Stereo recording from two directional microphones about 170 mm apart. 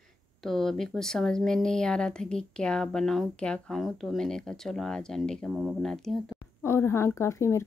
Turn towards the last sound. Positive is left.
turn(degrees=15)  # may be behind; listen again after turning